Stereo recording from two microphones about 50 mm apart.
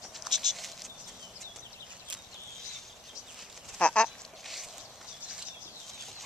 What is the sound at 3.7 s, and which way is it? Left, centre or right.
Duck, left.